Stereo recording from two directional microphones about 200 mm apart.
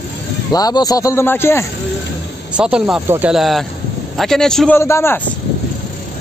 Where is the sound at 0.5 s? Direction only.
20° left (ahead or behind).